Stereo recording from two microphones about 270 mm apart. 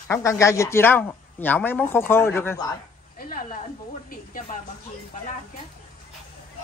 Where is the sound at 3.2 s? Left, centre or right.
Left.